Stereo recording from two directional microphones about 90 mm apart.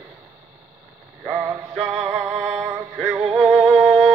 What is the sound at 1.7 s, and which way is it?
Music, centre (ahead or behind).